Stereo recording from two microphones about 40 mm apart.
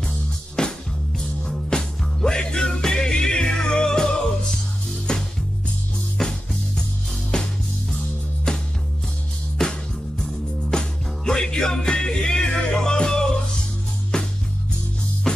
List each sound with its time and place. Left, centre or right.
0.0 s music: centre
7.3 s music: centre
9.6 s music: centre